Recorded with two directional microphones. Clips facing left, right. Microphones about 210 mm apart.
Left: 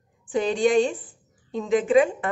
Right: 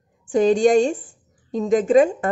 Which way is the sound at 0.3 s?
45° right (ahead or behind).